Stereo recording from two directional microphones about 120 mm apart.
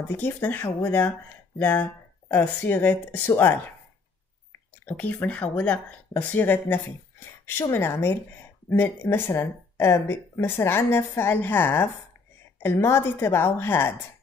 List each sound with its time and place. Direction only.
0.1 s speech: 15° left (ahead or behind)
4.8 s speech: 15° left (ahead or behind)